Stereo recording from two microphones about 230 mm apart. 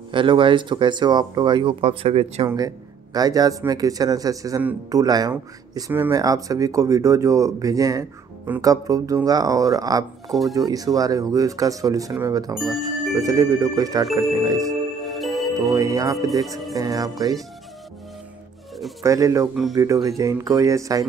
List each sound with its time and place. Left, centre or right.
0.1 s speech: right
10.2 s speech: centre
10.5 s speech: centre
12.5 s speech: centre
13.1 s speech: centre
15.0 s music: centre
15.5 s speech: centre
16.4 s speech: centre
16.7 s speech: centre
19.0 s speech: centre